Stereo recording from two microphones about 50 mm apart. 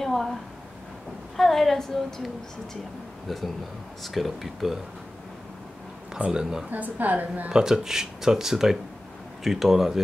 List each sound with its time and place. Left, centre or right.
0.0 s a woman's voice: centre
6.1 s speech: centre
6.7 s a woman's voice: right
7.5 s speech: centre